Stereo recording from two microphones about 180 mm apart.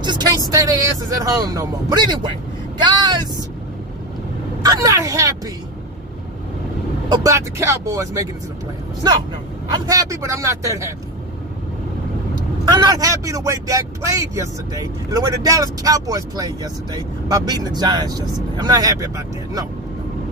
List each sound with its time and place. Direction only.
0.0 s vehicle: 25° right (ahead or behind)
0.5 s speech: 20° right (ahead or behind)
4.6 s speech: 20° right (ahead or behind)
7.1 s speech: 15° right (ahead or behind)
9.7 s speech: 20° right (ahead or behind)
12.7 s speech: 20° right (ahead or behind)